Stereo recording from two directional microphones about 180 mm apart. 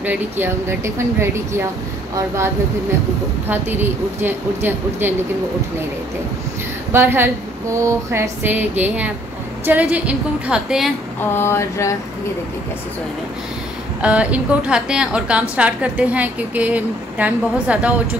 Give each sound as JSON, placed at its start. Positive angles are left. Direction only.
{"t": 0.0, "sound": "a woman's voice", "side_deg": -10}
{"t": 6.9, "sound": "a woman's voice", "side_deg": -10}
{"t": 11.3, "sound": "a sound", "side_deg": 15}
{"t": 14.0, "sound": "a woman's voice", "side_deg": -5}